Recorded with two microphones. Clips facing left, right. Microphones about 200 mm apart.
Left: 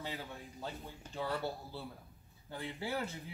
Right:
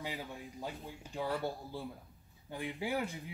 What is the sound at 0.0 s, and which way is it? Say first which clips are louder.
Speech: right 2 dB; 10° right (ahead or behind).